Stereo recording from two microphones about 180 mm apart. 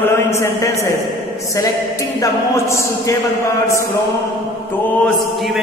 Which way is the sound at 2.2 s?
15° left (ahead or behind).